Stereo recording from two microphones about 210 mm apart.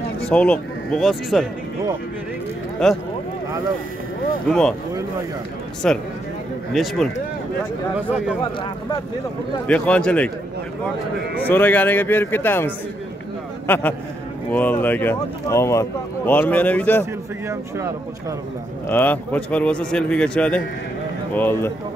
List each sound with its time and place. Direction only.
0.2 s speech: 5° left (ahead or behind)
2.8 s a man's voice: centre (ahead or behind)
4.5 s a man's voice: 5° left (ahead or behind)
5.8 s a man's voice: 5° left (ahead or behind)
8.4 s speech: 20° left (ahead or behind)
9.7 s a man's voice: 5° left (ahead or behind)
11.3 s speech: 10° left (ahead or behind)
17.0 s speech: 15° right (ahead or behind)
18.9 s a man's voice: 10° left (ahead or behind)